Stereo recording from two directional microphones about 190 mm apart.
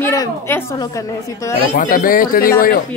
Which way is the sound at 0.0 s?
15° left (ahead or behind).